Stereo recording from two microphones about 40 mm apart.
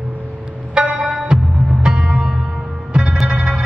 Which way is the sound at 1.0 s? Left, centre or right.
Centre.